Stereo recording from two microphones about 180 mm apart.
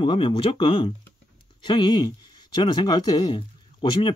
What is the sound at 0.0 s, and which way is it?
Speech, 30° left (ahead or behind).